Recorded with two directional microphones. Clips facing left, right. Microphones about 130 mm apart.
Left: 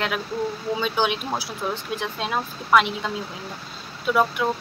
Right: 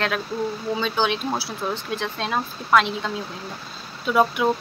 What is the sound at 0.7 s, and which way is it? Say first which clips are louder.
Speech: even; 10° left (ahead or behind).